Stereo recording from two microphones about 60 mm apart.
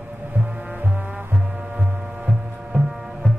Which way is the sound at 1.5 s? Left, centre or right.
Right.